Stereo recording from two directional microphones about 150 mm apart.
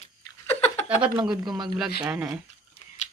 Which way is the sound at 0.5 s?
45° left (ahead or behind).